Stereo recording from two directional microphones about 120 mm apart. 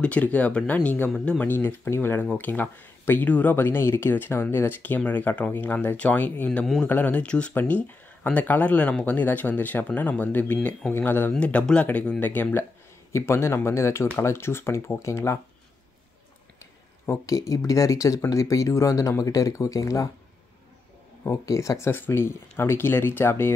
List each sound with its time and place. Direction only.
0.0 s speech: 10° left (ahead or behind)
17.0 s speech: 25° left (ahead or behind)
21.2 s speech: 25° left (ahead or behind)